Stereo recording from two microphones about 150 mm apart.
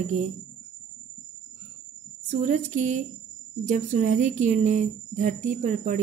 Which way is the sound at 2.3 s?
55° right (ahead or behind).